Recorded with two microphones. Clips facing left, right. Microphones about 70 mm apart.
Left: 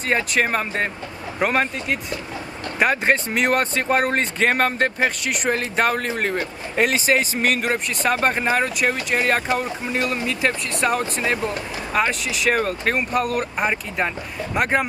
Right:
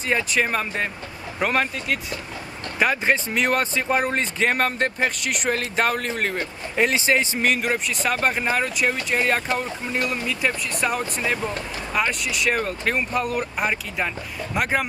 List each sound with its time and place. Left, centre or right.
0.5 s speech: left
1.4 s speech: centre
11.5 s speech: centre
12.1 s speech: centre